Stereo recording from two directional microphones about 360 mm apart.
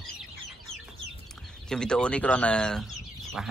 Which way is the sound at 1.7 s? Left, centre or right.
Centre.